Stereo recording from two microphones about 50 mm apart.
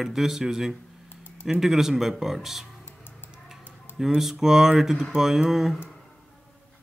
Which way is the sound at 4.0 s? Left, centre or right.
Centre.